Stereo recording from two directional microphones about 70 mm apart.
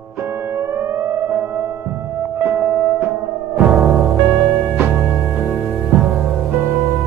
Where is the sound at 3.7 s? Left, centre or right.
Centre.